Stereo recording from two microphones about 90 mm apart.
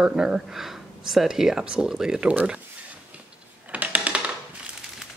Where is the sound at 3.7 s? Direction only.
15° right (ahead or behind).